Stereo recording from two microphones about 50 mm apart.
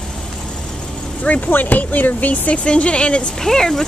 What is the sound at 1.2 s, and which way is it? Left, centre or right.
Speech, left.